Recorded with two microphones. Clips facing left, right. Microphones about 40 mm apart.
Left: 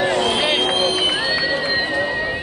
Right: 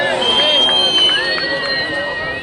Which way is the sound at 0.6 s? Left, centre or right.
Right.